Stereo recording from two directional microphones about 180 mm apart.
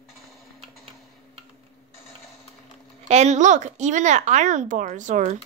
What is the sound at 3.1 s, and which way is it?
Speech, 40° right (ahead or behind).